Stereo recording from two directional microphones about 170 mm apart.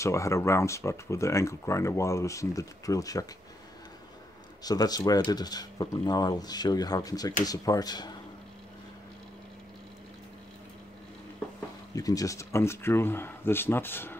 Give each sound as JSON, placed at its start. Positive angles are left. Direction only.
{"t": 0.0, "sound": "speech", "side_deg": 15}
{"t": 4.6, "sound": "speech", "side_deg": 20}
{"t": 11.9, "sound": "speech", "side_deg": 20}